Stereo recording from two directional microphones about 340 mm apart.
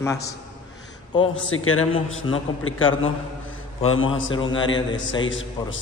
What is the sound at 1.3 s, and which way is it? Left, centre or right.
A man's voice, left.